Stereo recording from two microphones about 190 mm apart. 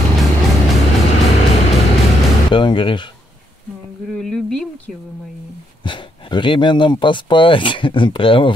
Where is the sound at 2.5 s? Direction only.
25° left (ahead or behind).